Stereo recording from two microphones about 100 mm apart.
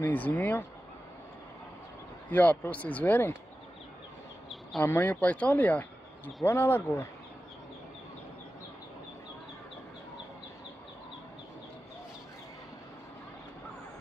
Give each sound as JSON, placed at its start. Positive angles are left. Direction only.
{"t": 0.0, "sound": "speech", "side_deg": 15}
{"t": 2.2, "sound": "speech", "side_deg": 15}
{"t": 4.7, "sound": "speech", "side_deg": 20}